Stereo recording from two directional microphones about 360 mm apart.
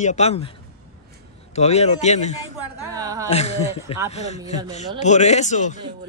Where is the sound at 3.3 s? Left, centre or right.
Centre.